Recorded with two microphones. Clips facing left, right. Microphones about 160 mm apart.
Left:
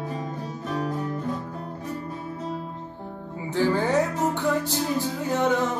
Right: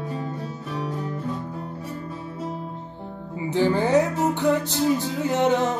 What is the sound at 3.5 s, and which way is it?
Music, 15° right (ahead or behind).